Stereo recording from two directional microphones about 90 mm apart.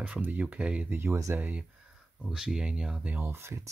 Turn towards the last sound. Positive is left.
turn(degrees=-30)  # may be behind; listen again after turning